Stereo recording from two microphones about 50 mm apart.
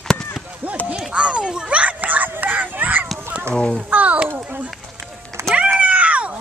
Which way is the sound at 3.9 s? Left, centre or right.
Right.